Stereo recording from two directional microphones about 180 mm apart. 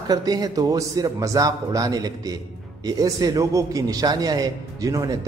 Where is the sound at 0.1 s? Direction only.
20° right (ahead or behind).